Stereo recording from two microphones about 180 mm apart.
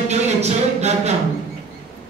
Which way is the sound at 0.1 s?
40° right (ahead or behind).